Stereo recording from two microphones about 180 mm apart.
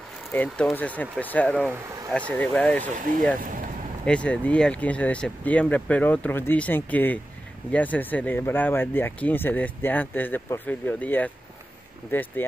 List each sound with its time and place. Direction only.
0.3 s speech: 5° left (ahead or behind)
2.8 s speech: 50° right (ahead or behind)
4.0 s speech: 5° left (ahead or behind)